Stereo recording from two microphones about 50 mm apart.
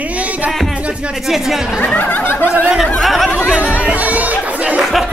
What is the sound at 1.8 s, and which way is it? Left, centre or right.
Speech, left.